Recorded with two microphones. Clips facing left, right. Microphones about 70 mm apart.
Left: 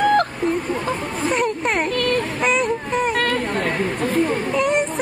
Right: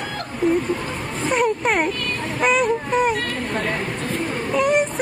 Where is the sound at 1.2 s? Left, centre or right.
Centre.